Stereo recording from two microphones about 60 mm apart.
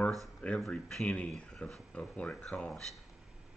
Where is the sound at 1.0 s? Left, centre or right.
Centre.